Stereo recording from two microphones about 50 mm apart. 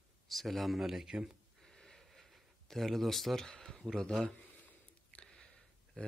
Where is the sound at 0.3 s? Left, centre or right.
Centre.